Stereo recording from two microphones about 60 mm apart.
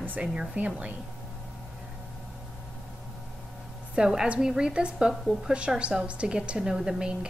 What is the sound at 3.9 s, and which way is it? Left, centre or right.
A woman's voice, centre.